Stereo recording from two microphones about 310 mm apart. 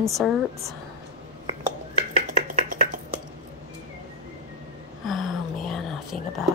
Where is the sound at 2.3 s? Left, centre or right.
Right.